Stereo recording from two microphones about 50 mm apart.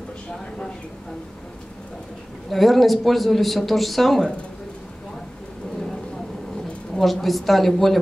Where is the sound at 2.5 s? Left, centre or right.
Centre.